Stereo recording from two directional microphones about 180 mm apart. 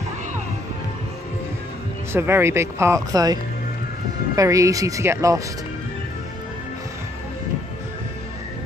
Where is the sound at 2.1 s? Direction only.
15° right (ahead or behind).